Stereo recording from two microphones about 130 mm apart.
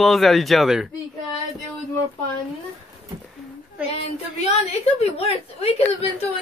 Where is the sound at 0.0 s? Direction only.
Centre (ahead or behind).